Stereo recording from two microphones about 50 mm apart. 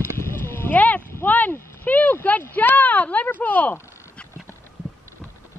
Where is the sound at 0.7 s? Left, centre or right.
Left.